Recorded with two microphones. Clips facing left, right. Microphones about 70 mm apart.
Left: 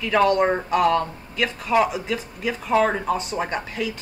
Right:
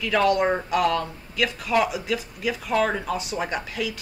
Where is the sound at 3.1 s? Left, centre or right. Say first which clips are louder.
Left 3 dB; left.